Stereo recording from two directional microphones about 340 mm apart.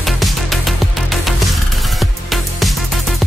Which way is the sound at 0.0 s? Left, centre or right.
Centre.